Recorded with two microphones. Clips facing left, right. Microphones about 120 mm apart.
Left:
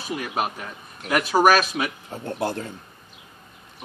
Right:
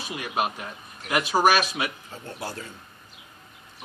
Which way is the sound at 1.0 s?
50° left (ahead or behind).